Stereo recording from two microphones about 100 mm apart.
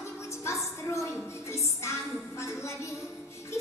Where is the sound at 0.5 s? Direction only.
30° left (ahead or behind).